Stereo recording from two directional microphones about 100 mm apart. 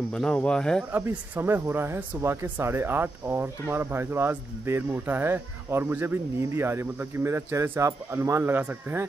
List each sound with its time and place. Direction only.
0.1 s speech: 10° left (ahead or behind)
0.9 s speech: 20° right (ahead or behind)